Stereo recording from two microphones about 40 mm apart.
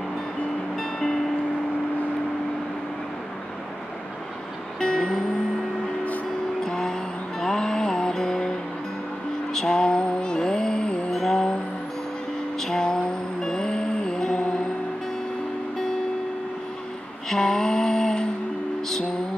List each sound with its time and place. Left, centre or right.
0.7 s music: centre
4.7 s music: centre
6.6 s music: centre
12.5 s music: centre
17.3 s a sound: centre